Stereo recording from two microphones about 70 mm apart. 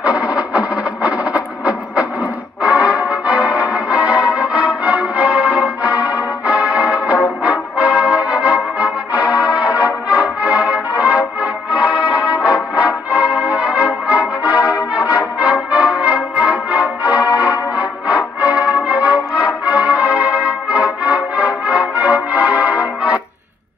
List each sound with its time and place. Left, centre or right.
0.0 s music: centre
15.0 s brass instrument: centre